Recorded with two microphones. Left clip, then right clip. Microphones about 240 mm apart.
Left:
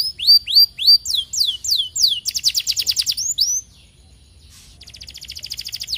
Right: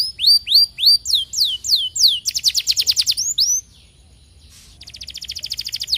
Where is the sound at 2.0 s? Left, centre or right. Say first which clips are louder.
Right 2 dB; centre.